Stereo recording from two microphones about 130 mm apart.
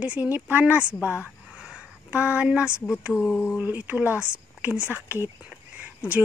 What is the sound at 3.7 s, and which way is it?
Speech, 10° right (ahead or behind).